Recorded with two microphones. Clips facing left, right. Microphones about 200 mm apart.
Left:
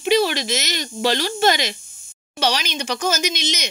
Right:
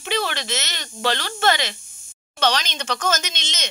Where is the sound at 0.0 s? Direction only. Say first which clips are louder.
Left 7 dB; 10° left (ahead or behind).